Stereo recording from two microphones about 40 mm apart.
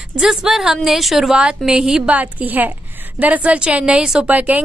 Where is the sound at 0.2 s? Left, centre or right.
Centre.